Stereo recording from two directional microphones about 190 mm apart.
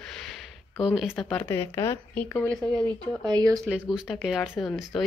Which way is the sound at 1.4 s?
15° left (ahead or behind).